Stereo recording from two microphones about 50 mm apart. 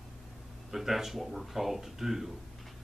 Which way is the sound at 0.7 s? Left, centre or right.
Centre.